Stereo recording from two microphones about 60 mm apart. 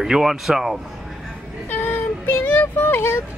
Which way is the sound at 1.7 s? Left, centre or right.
Left.